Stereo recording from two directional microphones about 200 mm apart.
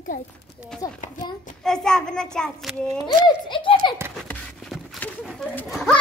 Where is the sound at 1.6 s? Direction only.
5° left (ahead or behind).